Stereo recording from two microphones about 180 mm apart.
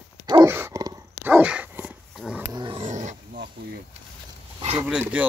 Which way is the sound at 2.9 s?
45° right (ahead or behind).